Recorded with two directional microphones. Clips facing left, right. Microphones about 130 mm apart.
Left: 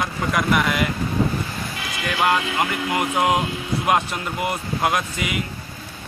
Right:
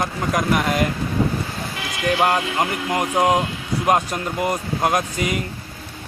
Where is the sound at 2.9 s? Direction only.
5° left (ahead or behind).